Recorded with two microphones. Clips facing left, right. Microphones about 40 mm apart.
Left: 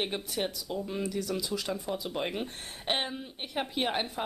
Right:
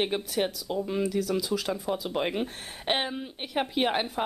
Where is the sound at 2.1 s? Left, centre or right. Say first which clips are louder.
Right 4 dB; centre.